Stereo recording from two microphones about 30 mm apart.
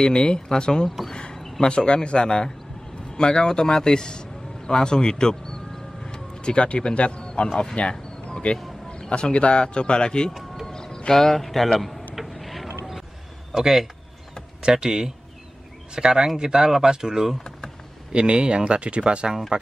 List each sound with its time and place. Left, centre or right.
0.0 s a man's voice: left
6.0 s vehicle: left
7.0 s a man's voice: left
10.7 s music: left
11.1 s speech: centre
11.3 s a man's voice: centre
12.3 s boat: centre
13.6 s speech: centre
14.6 s speech: right
18.1 s speech: right